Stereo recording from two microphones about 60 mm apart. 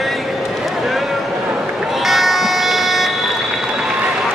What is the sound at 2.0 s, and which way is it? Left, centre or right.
Buzzer, centre.